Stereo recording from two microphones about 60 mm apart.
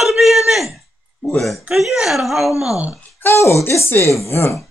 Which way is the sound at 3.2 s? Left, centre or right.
Left.